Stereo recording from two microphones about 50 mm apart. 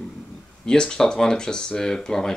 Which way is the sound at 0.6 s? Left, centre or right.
Centre.